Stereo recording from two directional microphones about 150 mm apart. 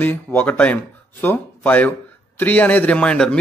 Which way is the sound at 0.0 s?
10° left (ahead or behind).